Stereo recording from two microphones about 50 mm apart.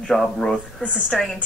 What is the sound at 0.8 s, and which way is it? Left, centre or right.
Speech, left.